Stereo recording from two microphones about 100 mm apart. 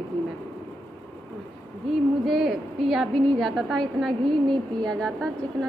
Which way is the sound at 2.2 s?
Centre (ahead or behind).